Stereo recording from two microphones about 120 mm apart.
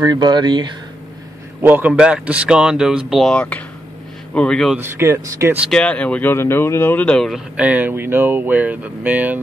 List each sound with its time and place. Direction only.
0.0 s speech: 35° right (ahead or behind)
1.6 s speech: 15° right (ahead or behind); by 4.7 s 5° left (ahead or behind)
4.7 s speech: 20° right (ahead or behind)
5.7 s speech: 10° left (ahead or behind); by 9.4 s 15° right (ahead or behind)